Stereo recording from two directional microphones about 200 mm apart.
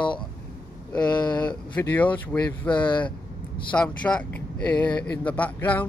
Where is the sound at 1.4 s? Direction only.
5° left (ahead or behind).